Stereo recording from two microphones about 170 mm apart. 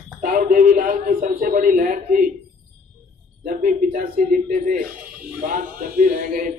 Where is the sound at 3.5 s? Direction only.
55° right (ahead or behind).